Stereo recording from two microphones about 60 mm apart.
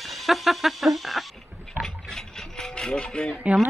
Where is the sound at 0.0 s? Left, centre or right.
Centre.